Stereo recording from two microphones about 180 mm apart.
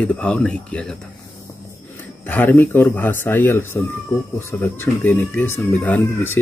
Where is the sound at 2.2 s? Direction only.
10° left (ahead or behind).